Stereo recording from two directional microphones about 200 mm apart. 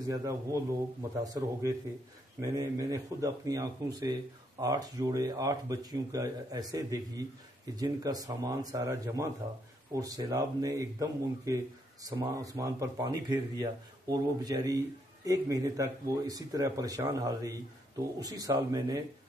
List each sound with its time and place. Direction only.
0.1 s speech: 15° right (ahead or behind)